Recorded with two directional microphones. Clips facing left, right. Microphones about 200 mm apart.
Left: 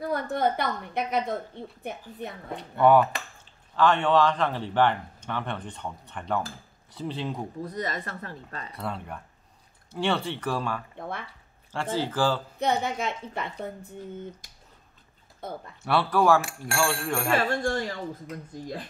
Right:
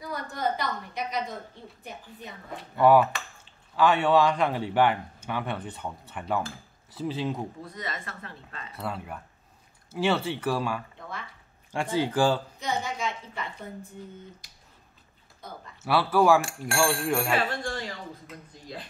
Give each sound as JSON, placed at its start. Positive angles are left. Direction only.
{"t": 0.0, "sound": "a sound", "side_deg": 60}
{"t": 2.5, "sound": "a man's voice", "side_deg": -5}
{"t": 7.6, "sound": "speech", "side_deg": 40}
{"t": 8.7, "sound": "a man's voice", "side_deg": -5}
{"t": 11.0, "sound": "a woman's voice", "side_deg": 55}
{"t": 11.7, "sound": "a man's voice", "side_deg": -15}
{"t": 12.5, "sound": "a woman's voice", "side_deg": 60}
{"t": 15.8, "sound": "a man's voice", "side_deg": -5}
{"t": 17.4, "sound": "speech", "side_deg": 45}